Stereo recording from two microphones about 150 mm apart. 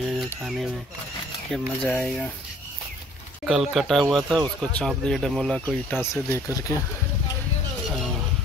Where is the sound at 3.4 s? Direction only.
Centre (ahead or behind).